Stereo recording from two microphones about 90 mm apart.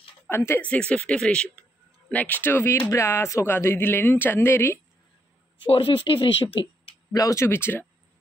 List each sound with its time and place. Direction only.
0.6 s speech: 15° left (ahead or behind)
5.7 s speech: 85° left
7.1 s speech: 40° left (ahead or behind)
7.4 s speech: 25° left (ahead or behind)